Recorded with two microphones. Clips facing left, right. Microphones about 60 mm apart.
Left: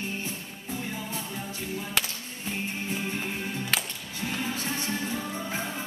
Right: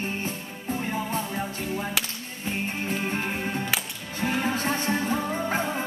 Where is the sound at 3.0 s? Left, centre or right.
Right.